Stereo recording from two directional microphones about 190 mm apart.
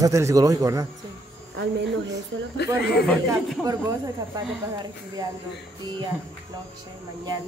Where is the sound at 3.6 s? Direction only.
20° right (ahead or behind).